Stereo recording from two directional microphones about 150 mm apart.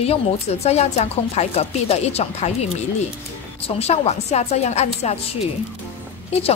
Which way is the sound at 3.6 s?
45° left (ahead or behind).